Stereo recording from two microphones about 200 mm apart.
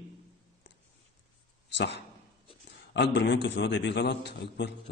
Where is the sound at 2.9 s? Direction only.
60° left (ahead or behind).